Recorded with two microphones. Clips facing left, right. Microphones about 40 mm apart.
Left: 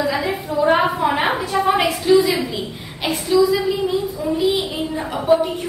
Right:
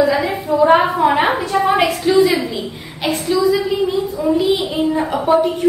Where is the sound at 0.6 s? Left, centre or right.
Centre.